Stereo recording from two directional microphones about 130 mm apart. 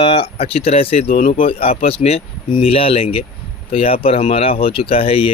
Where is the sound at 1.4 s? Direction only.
45° left (ahead or behind).